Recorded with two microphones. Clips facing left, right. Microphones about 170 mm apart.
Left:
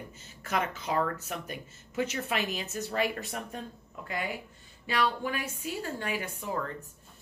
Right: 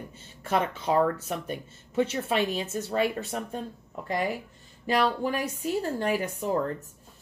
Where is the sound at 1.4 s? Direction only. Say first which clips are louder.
Right 6 dB; 30° right (ahead or behind).